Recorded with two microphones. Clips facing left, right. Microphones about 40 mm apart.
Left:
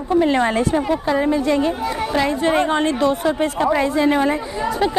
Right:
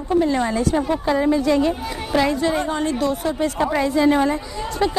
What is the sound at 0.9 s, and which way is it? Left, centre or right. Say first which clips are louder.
Speech: right 1 dB; centre.